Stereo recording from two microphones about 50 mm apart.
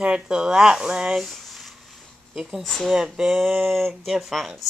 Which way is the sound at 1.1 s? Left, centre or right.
Centre.